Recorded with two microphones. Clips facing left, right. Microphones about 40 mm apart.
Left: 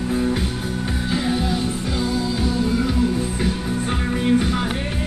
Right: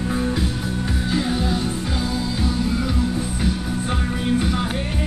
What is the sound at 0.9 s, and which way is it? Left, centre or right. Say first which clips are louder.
Music: even; centre.